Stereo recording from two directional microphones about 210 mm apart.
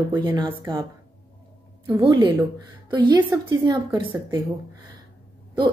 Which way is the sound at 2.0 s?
25° right (ahead or behind).